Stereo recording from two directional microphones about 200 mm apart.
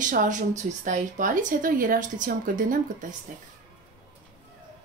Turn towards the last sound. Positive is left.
turn(degrees=-40)  # may be behind; listen again after turning